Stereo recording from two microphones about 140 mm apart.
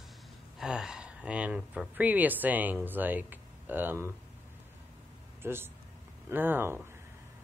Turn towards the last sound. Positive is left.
turn(degrees=-15)  # may be behind; listen again after turning